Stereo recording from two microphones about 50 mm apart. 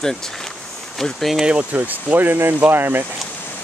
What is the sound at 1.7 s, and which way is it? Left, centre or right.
Speech, right.